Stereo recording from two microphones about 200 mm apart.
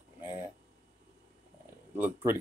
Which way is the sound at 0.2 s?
10° right (ahead or behind).